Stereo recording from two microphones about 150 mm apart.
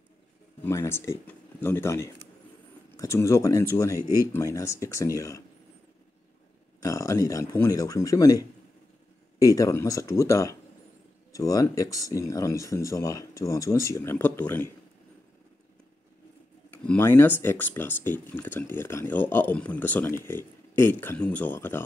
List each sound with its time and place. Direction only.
0.7 s speech: 20° left (ahead or behind)
6.8 s speech: 20° left (ahead or behind)
9.4 s speech: 20° left (ahead or behind)
16.7 s speech: 10° left (ahead or behind)